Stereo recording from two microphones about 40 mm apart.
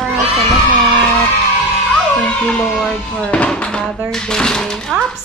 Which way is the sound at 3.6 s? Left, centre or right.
Left.